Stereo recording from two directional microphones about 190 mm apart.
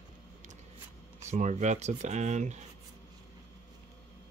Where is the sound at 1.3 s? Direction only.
40° right (ahead or behind).